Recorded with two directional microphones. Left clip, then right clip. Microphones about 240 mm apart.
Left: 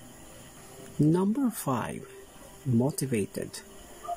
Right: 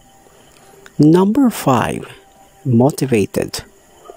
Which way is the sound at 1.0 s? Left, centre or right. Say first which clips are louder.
Right 15 dB; right.